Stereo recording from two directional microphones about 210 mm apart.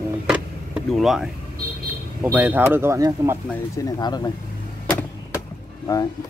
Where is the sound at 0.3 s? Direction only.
5° right (ahead or behind).